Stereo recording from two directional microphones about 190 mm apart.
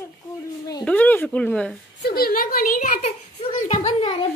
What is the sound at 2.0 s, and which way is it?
Speech, 55° left (ahead or behind).